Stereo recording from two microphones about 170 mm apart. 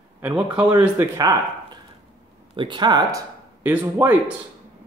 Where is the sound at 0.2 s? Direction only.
5° right (ahead or behind).